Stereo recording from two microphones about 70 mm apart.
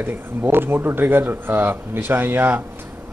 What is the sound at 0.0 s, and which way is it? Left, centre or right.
Speech, right.